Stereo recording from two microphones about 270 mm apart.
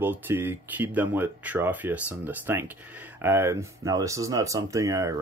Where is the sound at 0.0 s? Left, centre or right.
Centre.